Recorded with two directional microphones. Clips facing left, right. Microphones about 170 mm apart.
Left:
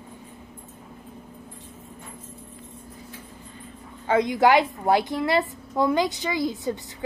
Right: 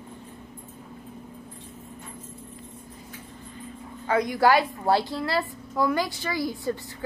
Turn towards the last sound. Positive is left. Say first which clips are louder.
# left 2 dB
turn(degrees=20)  # may be behind; listen again after turning